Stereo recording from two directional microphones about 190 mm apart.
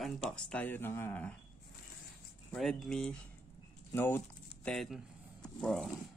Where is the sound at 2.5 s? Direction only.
Centre (ahead or behind).